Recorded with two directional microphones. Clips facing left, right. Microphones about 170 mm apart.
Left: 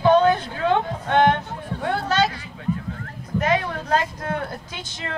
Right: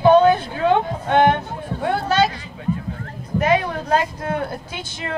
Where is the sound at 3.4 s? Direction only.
15° right (ahead or behind).